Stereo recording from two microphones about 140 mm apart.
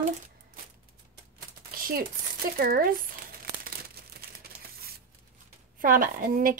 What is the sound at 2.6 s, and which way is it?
Speech, 90° right.